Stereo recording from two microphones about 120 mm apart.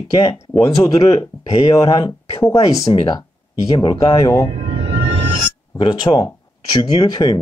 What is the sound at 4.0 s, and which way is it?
Speech, 25° left (ahead or behind).